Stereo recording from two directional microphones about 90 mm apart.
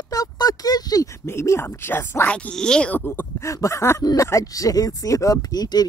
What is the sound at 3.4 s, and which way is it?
Speech, 35° left (ahead or behind).